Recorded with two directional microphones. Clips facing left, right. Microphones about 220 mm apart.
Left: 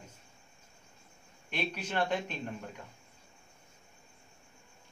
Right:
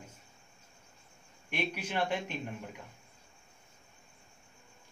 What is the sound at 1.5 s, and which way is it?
Speech, 10° right (ahead or behind).